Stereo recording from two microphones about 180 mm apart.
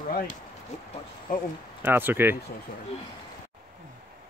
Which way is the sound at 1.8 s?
10° right (ahead or behind).